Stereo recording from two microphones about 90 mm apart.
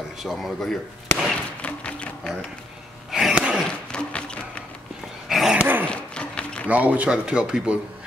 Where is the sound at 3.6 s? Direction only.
10° left (ahead or behind).